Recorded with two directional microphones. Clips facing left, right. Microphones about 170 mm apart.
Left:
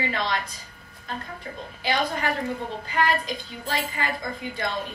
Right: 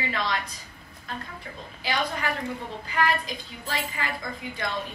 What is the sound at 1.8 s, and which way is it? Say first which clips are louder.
Speech: left 3 dB; 35° left (ahead or behind).